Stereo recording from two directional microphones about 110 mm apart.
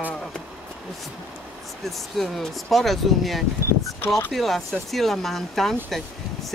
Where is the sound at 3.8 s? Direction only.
30° left (ahead or behind).